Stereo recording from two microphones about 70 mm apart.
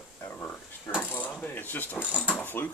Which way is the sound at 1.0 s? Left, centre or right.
Left.